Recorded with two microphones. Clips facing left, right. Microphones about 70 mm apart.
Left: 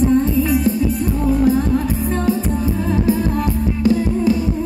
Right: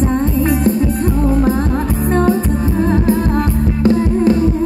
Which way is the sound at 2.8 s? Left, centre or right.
Right.